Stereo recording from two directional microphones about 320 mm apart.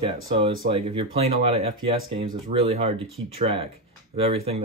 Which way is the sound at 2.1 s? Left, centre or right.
Centre.